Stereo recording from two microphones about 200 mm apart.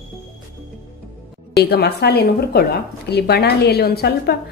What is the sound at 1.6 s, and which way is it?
A woman's voice, 55° left (ahead or behind).